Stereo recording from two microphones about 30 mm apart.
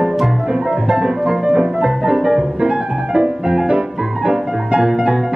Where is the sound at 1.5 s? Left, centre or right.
Right.